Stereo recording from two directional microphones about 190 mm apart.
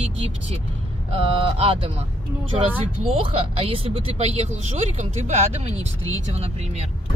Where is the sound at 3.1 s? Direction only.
30° right (ahead or behind).